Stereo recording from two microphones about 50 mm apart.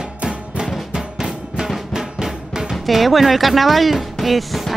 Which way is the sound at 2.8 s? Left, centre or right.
Centre.